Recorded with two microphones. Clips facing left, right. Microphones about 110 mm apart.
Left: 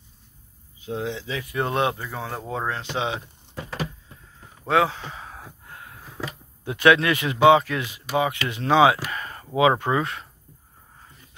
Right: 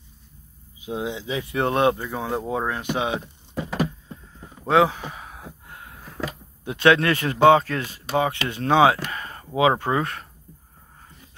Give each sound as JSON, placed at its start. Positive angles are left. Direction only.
{"t": 0.7, "sound": "speech", "side_deg": -15}
{"t": 2.0, "sound": "speech", "side_deg": -15}
{"t": 4.6, "sound": "a sound", "side_deg": -15}
{"t": 6.6, "sound": "speech", "side_deg": -25}
{"t": 7.0, "sound": "speech", "side_deg": -40}
{"t": 8.1, "sound": "speech", "side_deg": -30}
{"t": 9.1, "sound": "a sound", "side_deg": -30}
{"t": 9.6, "sound": "speech", "side_deg": -30}